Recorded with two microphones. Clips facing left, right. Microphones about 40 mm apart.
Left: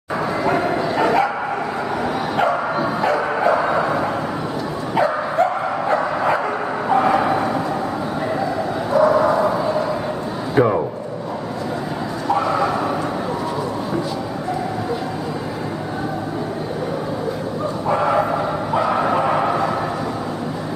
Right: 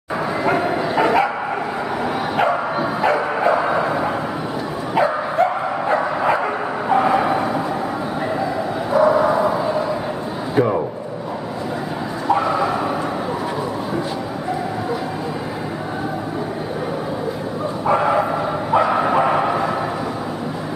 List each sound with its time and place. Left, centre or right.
0.2 s dog: centre
2.3 s bow-wow: centre
8.9 s bow-wow: centre
12.3 s bow-wow: centre
17.8 s bow-wow: centre
18.1 s bow-wow: centre
18.7 s bow-wow: centre